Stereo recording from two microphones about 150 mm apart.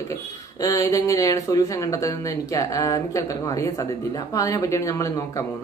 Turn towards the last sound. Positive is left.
turn(degrees=20)  # may be behind; listen again after turning